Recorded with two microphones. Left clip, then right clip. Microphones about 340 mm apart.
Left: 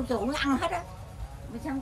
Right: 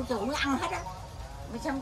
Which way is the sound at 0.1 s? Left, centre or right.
Centre.